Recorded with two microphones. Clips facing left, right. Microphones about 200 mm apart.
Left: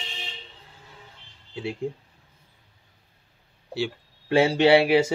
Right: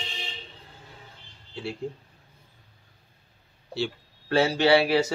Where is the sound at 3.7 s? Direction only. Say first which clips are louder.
Left 1 dB; 15° left (ahead or behind).